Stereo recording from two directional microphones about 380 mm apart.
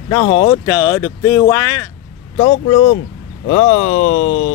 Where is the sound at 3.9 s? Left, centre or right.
Left.